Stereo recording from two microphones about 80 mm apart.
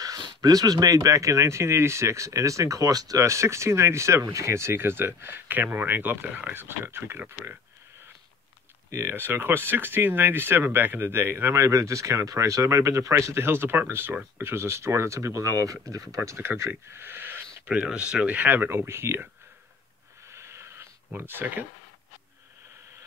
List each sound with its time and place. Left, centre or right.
0.4 s speech: right
8.9 s speech: right
16.2 s speech: right
17.6 s speech: centre; by 19.2 s right
20.2 s wheeze: right
21.2 s speech: right